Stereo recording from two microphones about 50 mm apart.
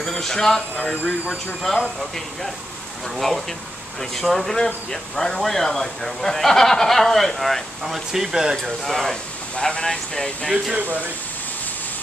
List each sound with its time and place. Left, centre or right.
0.0 s speech: centre
0.7 s speech: left
2.0 s speech: centre
8.6 s speech: centre
9.1 s speech: centre
10.8 s speech: right